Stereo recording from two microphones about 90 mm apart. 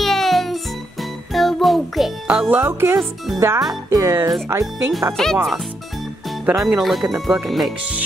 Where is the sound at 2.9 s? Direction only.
Centre (ahead or behind).